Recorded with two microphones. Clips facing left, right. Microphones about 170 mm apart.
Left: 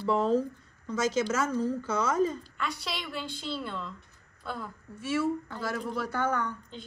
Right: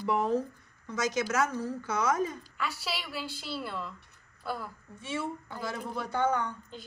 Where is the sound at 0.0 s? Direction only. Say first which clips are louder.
Left 3 dB; 15° right (ahead or behind).